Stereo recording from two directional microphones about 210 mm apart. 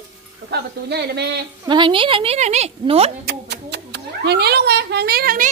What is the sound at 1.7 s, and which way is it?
A woman's voice, 20° right (ahead or behind).